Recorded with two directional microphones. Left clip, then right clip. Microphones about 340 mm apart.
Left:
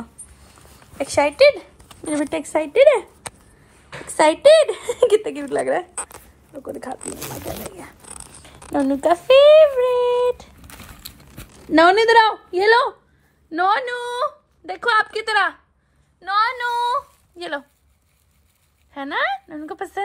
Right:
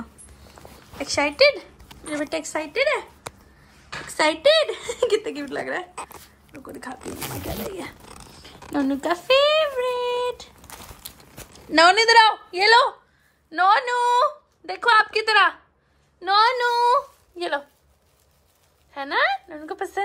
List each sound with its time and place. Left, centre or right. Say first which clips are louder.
0.6 s a sound: right 6 dB; right
0.9 s speech: left 4 dB; centre
2.2 s a woman's voice: left 5 dB; centre
4.2 s a woman's voice: left 6 dB; centre
8.7 s a woman's voice: left 6 dB; centre
10.6 s a sound: left 1 dB; centre
11.7 s a woman's voice: left 2 dB; centre
16.2 s a woman's voice: right 2 dB; centre
18.9 s a woman's voice: right 1 dB; centre